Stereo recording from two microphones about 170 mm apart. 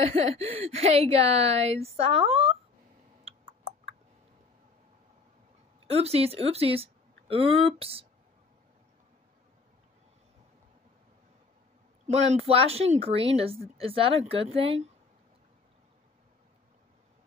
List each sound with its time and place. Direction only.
0.0 s a woman's voice: 35° right (ahead or behind)
3.3 s a sound: 35° right (ahead or behind)
5.9 s speech: 35° right (ahead or behind)
12.1 s a woman's voice: 35° right (ahead or behind)